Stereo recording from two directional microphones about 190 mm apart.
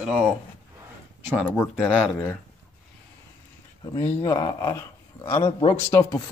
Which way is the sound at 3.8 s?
15° left (ahead or behind).